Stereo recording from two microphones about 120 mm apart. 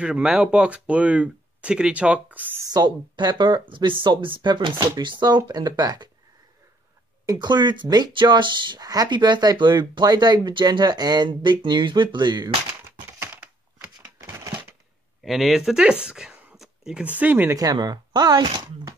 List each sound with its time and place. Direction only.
0.0 s speech: 5° right (ahead or behind)
2.7 s speech: 35° right (ahead or behind)
7.2 s speech: 35° right (ahead or behind)
13.2 s crushing: 15° right (ahead or behind)
14.2 s a sound: 20° right (ahead or behind)
15.2 s speech: centre (ahead or behind)
17.6 s speech: 30° right (ahead or behind)